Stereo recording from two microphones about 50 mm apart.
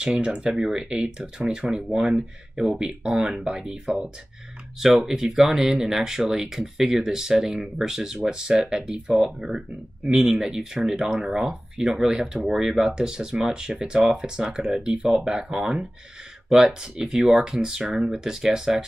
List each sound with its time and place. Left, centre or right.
0.0 s speech: right